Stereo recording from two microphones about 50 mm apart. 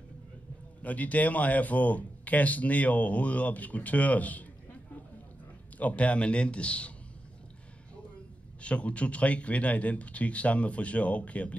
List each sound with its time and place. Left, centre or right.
0.8 s speech: left
5.8 s speech: left
8.5 s speech: left